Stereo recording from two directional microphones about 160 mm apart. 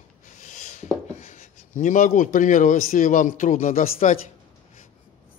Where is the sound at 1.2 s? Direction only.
50° left (ahead or behind).